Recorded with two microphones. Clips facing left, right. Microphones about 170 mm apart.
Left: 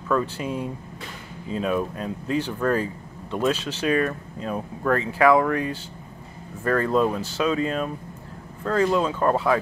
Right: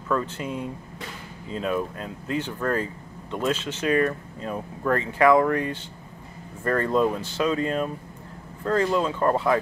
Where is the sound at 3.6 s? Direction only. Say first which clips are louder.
Even; 25° right (ahead or behind).